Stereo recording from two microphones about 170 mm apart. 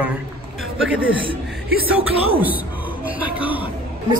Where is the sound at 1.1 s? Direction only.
30° right (ahead or behind).